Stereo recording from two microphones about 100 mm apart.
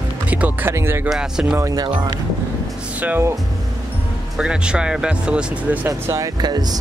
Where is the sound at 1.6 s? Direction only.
40° right (ahead or behind).